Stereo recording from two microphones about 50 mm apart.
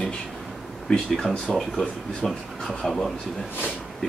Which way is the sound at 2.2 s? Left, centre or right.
Centre.